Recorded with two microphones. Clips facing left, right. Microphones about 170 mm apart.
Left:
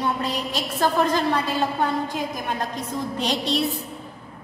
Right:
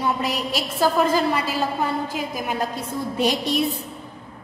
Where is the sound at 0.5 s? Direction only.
5° right (ahead or behind).